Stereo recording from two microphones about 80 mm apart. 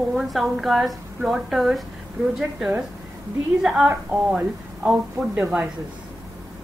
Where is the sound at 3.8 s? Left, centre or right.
Centre.